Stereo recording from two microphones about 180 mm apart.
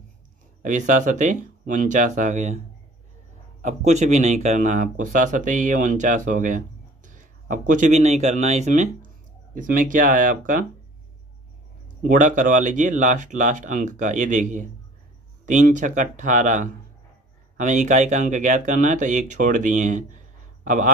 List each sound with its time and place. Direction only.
0.6 s speech: 45° right (ahead or behind)
3.6 s speech: 40° right (ahead or behind)
12.1 s a man's voice: 45° right (ahead or behind)